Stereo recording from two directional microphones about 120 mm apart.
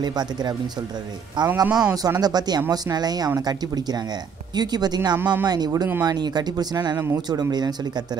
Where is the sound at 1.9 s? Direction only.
30° right (ahead or behind).